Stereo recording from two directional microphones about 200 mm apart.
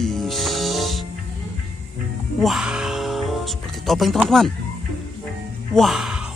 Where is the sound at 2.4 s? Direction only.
Centre (ahead or behind).